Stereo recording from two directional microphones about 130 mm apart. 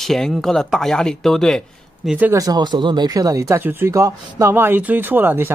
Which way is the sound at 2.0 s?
15° right (ahead or behind).